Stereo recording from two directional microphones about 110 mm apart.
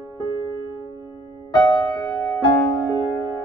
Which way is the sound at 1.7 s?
35° left (ahead or behind).